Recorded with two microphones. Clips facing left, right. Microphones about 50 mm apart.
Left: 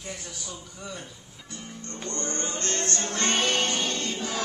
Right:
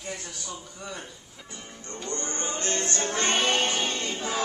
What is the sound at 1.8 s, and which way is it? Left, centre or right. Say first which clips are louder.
Music: even; centre.